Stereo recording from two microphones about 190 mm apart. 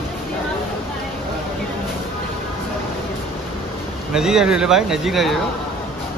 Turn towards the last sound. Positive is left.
turn(degrees=0)  # may be behind; listen again after turning